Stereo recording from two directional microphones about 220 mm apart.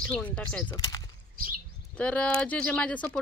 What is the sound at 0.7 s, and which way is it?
Speech, 20° left (ahead or behind).